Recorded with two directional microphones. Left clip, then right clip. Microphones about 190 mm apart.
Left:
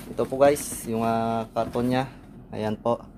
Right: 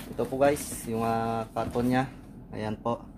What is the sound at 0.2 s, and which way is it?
Speech, 45° left (ahead or behind).